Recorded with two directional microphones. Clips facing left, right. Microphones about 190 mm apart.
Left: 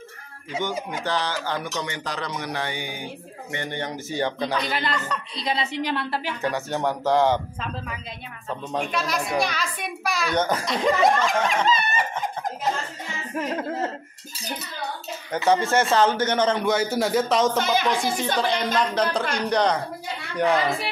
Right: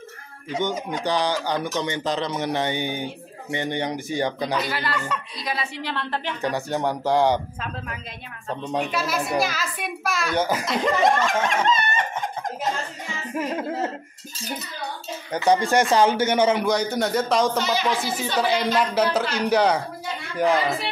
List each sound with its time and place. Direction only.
1.0 s speech: 15° right (ahead or behind)
4.6 s speech: 20° left (ahead or behind)
5.0 s a woman's voice: centre (ahead or behind)
5.4 s a woman's voice: 25° left (ahead or behind)
6.5 s speech: 15° right (ahead or behind)
8.7 s a woman's voice: 5° right (ahead or behind)
13.3 s speech: 10° right (ahead or behind)
15.3 s speech: 15° right (ahead or behind)
16.6 s a woman's voice: 5° left (ahead or behind)